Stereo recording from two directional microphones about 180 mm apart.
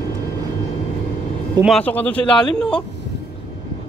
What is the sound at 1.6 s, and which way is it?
Speech, 5° left (ahead or behind).